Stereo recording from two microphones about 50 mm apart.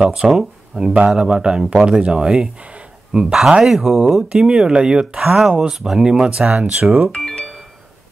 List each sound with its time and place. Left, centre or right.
0.0 s speech: centre
4.2 s speech: centre
7.2 s music: centre